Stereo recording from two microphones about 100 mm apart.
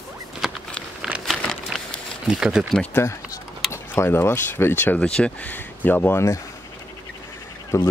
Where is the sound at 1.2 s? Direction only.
5° left (ahead or behind).